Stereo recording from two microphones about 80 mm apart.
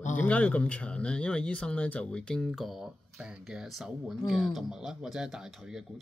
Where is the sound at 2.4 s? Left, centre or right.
Centre.